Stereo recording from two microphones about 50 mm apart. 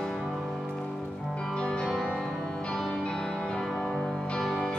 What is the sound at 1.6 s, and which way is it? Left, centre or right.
Music, centre.